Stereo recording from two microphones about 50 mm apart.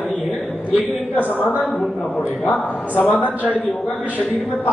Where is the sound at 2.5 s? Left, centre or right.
Left.